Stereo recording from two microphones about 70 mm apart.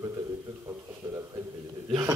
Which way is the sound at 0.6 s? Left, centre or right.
Right.